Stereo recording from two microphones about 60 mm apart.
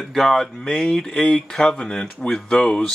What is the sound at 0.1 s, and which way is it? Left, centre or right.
Speech, centre.